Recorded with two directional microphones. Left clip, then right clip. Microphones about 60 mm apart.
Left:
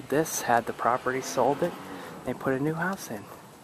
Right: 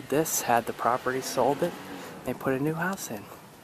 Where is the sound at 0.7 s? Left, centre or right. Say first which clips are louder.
Even; right.